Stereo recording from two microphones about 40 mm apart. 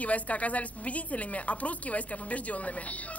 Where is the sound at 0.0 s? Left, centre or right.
Left.